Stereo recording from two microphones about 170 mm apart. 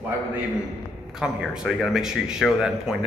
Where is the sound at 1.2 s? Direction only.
5° right (ahead or behind).